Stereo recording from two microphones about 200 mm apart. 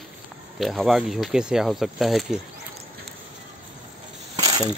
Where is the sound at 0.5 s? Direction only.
Centre (ahead or behind).